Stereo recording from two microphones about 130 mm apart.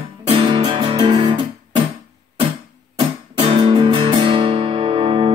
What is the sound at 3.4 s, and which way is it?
Music, 45° right (ahead or behind).